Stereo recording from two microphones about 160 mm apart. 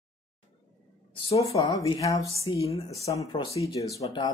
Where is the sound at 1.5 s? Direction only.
30° left (ahead or behind).